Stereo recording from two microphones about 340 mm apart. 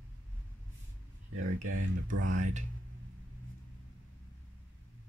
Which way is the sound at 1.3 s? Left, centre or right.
Right.